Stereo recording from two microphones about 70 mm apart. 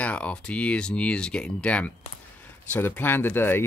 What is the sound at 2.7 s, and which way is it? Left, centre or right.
Speech, left.